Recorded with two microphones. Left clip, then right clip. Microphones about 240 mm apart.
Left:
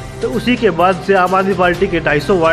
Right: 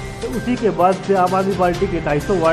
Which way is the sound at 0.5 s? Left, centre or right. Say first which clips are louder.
Left 3 dB; centre.